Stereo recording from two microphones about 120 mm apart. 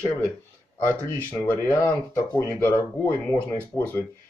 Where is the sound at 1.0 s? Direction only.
15° left (ahead or behind).